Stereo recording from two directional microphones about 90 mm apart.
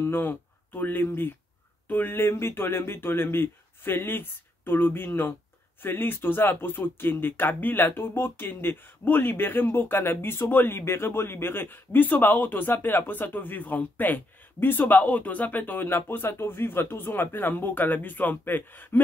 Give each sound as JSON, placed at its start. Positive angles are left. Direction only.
{"t": 0.0, "sound": "speech", "side_deg": 25}